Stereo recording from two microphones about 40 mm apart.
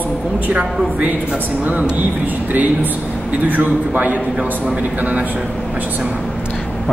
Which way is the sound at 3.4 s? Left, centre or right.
Right.